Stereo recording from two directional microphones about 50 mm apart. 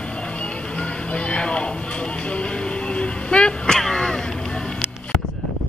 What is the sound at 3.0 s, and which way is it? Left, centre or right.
Vehicle, left.